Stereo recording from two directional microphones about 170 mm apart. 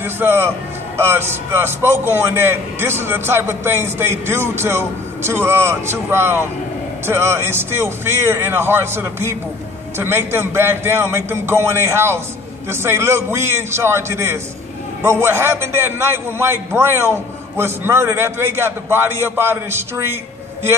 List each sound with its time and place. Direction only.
0.0 s a man's voice: 15° right (ahead or behind)